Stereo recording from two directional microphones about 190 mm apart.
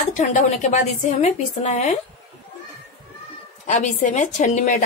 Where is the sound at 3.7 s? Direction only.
40° left (ahead or behind).